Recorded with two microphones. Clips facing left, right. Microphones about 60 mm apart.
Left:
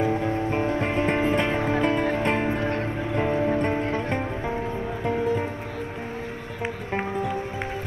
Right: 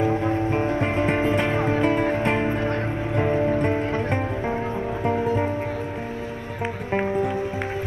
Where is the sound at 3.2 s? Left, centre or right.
Right.